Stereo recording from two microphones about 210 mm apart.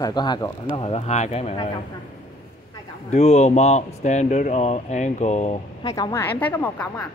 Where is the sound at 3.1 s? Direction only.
30° left (ahead or behind).